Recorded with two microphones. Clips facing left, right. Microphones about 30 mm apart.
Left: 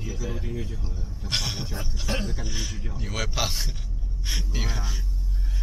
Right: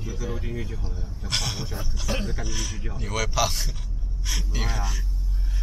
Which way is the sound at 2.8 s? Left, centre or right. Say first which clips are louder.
Right 1 dB; centre.